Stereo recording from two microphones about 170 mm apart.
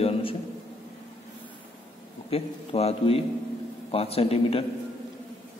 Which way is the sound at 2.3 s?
35° left (ahead or behind).